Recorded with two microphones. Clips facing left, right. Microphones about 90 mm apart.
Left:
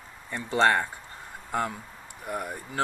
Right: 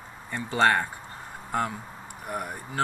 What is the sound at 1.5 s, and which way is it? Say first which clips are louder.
Speech: right 1 dB; centre (ahead or behind).